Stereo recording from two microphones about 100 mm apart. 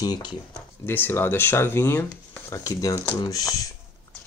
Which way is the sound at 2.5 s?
35° left (ahead or behind).